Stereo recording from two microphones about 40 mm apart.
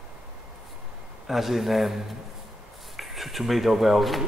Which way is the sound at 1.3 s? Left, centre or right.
Centre.